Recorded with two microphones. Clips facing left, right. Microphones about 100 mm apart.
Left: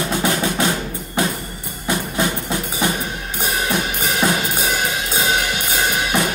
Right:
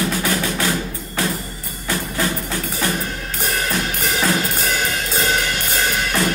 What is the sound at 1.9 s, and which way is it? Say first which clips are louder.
Music: left 2 dB; 20° left (ahead or behind).